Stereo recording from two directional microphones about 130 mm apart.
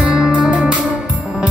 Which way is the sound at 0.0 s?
5° right (ahead or behind).